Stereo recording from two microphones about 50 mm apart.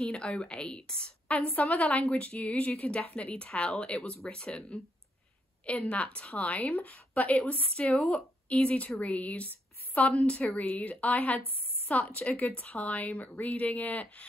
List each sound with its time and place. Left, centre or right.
0.0 s a woman's voice: left
1.3 s a woman's voice: left; by 4.7 s centre
5.7 s a woman's voice: left